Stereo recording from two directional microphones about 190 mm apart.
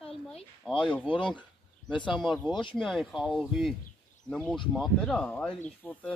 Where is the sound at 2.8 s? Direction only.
Centre (ahead or behind).